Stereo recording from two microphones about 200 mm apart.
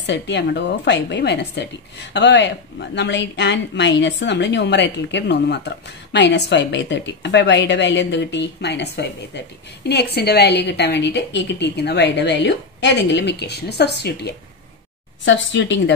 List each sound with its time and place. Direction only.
0.0 s a woman's voice: 60° left (ahead or behind)